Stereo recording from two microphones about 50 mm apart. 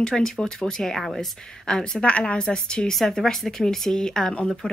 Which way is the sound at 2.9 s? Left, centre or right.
Centre.